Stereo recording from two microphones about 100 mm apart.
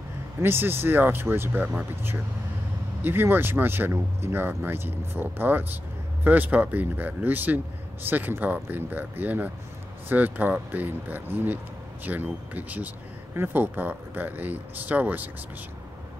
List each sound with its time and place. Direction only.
0.4 s speech: 25° right (ahead or behind)